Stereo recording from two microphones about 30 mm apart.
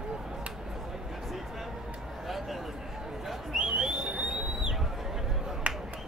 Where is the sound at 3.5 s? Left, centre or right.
Right.